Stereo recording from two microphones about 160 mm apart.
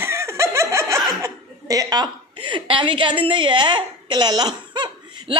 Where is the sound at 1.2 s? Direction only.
20° right (ahead or behind).